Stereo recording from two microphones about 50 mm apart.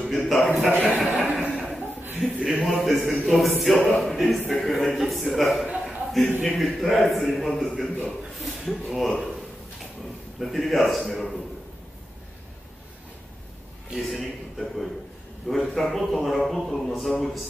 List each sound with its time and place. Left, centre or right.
0.0 s a man's voice: centre
0.9 s chuckle: right
1.4 s chuckle: centre
2.3 s a man's voice: centre
2.6 s a man's voice: centre
10.4 s a man's voice: centre
13.9 s a man's voice: centre